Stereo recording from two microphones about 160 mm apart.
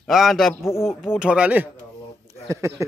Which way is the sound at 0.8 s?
5° right (ahead or behind).